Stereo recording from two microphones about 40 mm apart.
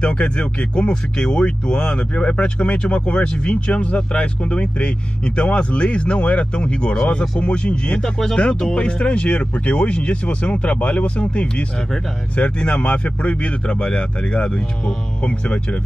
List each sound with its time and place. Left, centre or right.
0.0 s speech: left
8.0 s speech: centre
8.7 s speech: left